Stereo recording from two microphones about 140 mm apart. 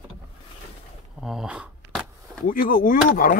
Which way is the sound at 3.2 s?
90° left.